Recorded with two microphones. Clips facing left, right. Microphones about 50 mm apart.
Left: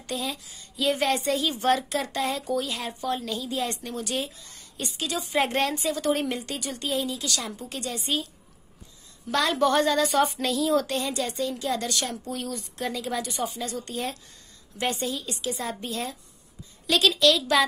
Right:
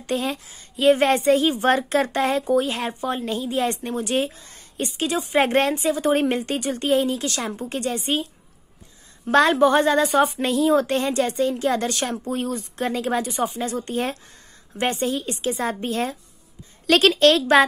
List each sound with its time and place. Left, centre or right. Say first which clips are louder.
0.0 s a woman's voice: right 7 dB; right
9.6 s a woman's voice: right 5 dB; right
10.3 s a woman's voice: right 5 dB; right